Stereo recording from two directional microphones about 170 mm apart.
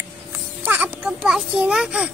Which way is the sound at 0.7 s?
5° right (ahead or behind).